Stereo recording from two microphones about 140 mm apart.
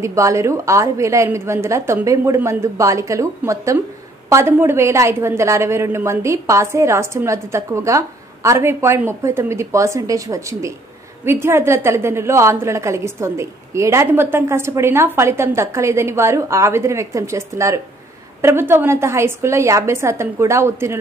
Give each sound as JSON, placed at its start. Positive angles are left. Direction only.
{"t": 0.0, "sound": "a woman's voice", "side_deg": -20}